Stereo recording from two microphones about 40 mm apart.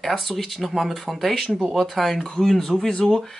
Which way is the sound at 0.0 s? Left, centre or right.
Centre.